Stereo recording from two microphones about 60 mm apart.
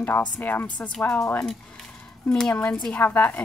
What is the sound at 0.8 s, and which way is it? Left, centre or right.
Speech, centre.